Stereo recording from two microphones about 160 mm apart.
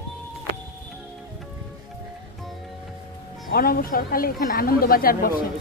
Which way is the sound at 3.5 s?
65° left (ahead or behind).